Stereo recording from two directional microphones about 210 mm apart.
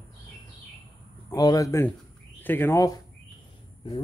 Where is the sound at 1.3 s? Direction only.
15° left (ahead or behind).